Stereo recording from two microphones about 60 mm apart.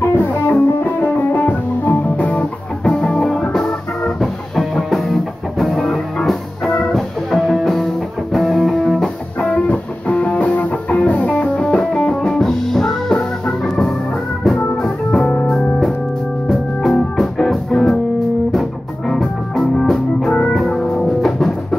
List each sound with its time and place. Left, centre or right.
0.0 s music: left
2.8 s music: centre
9.4 s music: left
17.2 s music: centre